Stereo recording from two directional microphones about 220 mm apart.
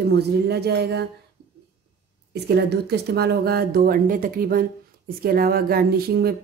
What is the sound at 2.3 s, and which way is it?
Speech, 45° right (ahead or behind).